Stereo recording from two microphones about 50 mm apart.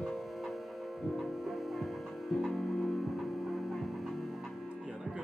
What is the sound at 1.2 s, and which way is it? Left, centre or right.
Music, centre.